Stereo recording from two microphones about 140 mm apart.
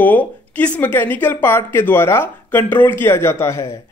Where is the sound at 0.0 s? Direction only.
10° left (ahead or behind).